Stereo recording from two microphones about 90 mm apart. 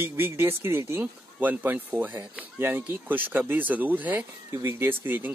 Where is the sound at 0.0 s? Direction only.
25° right (ahead or behind).